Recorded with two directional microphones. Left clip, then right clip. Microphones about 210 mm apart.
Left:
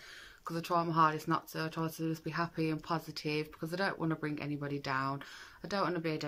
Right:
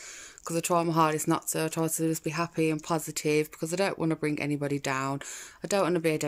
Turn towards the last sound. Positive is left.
turn(degrees=-15)  # may be behind; listen again after turning